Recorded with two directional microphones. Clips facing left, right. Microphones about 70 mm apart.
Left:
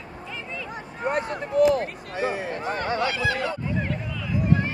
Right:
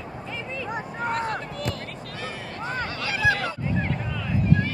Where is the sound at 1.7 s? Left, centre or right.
Left.